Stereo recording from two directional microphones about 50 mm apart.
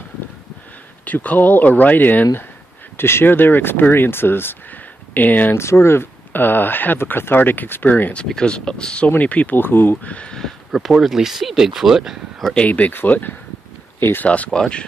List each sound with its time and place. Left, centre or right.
1.0 s speech: left
3.0 s speech: left
5.1 s speech: left
5.6 s speech: left
6.3 s speech: left
8.4 s speech: centre
9.6 s speech: left
10.0 s speech: left
10.7 s speech: centre
12.6 s speech: left
13.9 s speech: left
14.2 s speech: left
14.5 s speech: centre